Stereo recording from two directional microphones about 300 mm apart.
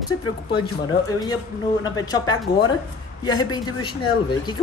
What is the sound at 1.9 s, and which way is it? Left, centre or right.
Speech, centre.